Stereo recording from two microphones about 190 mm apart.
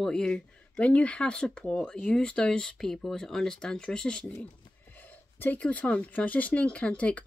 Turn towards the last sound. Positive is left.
turn(degrees=5)  # may be behind; listen again after turning